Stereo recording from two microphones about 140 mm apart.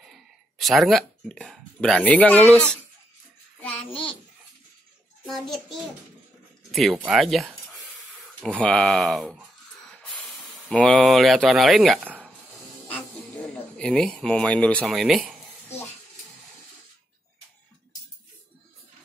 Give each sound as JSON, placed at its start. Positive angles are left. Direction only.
{"t": 0.0, "sound": "speech", "side_deg": 0}
{"t": 3.6, "sound": "a child's voice", "side_deg": 40}
{"t": 5.2, "sound": "speech", "side_deg": 0}
{"t": 10.7, "sound": "speech", "side_deg": 5}
{"t": 13.7, "sound": "speech", "side_deg": 5}